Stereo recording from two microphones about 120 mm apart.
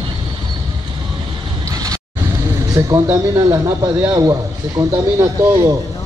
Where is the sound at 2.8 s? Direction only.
30° right (ahead or behind).